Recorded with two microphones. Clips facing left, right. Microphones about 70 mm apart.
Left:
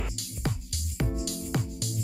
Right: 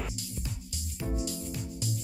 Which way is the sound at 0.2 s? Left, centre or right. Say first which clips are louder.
Left 6 dB; left.